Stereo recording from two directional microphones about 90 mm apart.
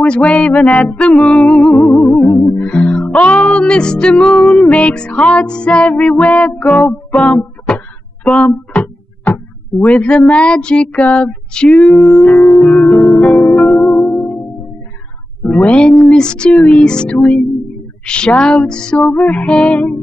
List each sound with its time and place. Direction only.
0.0 s music: 10° left (ahead or behind)
15.4 s speech: 15° left (ahead or behind)
16.1 s music: 10° left (ahead or behind)